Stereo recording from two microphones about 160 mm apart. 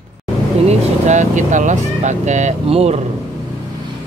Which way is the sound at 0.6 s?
45° right (ahead or behind).